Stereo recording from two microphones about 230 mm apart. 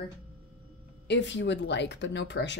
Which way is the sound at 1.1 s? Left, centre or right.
Left.